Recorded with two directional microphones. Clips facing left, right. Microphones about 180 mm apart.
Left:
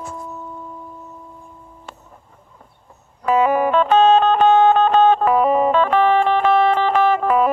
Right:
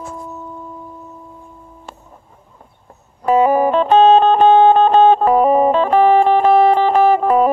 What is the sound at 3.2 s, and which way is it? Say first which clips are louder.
Music: right 3 dB; 35° right (ahead or behind).